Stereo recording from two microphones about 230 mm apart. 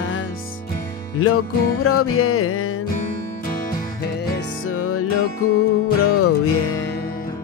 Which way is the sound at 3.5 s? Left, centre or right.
Left.